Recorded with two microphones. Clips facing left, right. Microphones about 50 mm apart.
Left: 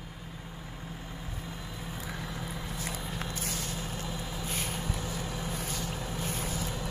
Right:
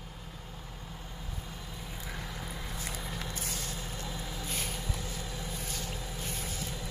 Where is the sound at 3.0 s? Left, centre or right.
Left.